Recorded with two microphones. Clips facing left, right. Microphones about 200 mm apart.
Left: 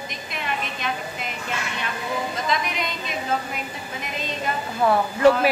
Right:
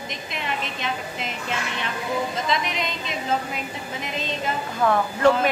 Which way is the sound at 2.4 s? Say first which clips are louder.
Even; 25° right (ahead or behind).